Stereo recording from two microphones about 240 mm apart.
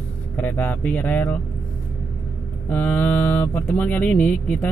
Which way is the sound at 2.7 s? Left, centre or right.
Centre.